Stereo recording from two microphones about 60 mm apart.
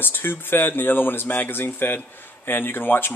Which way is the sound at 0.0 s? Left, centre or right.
Left.